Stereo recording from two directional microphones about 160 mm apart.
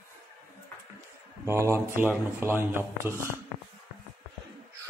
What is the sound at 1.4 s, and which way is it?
Speech, 15° right (ahead or behind).